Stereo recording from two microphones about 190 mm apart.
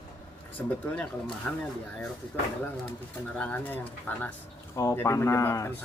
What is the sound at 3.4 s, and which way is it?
Speech, 10° left (ahead or behind).